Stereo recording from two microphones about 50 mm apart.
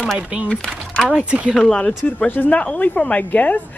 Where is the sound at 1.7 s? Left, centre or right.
Left.